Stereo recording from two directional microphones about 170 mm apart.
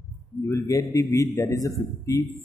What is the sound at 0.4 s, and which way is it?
A man's voice, 20° left (ahead or behind).